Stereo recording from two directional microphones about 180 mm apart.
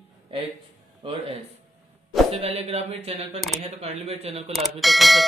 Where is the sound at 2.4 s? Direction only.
35° right (ahead or behind).